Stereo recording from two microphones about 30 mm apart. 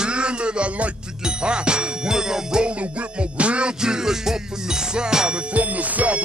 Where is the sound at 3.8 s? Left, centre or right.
Right.